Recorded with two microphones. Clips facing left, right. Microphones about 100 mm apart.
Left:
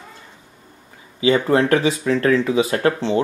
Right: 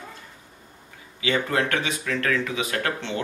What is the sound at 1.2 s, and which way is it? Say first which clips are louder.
Speech: left 8 dB; 30° left (ahead or behind).